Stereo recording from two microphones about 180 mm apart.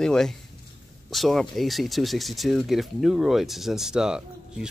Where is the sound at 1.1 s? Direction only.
Centre (ahead or behind).